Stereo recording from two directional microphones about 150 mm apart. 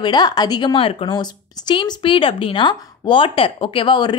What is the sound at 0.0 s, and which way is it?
A woman's voice, 30° left (ahead or behind).